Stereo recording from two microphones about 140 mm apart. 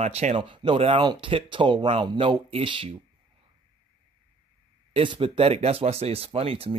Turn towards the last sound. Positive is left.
turn(degrees=-40)  # may be behind; listen again after turning